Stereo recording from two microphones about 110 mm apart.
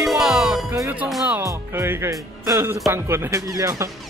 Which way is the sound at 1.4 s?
25° right (ahead or behind).